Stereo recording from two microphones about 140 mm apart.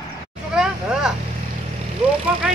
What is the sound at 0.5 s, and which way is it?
Vehicle, 5° right (ahead or behind).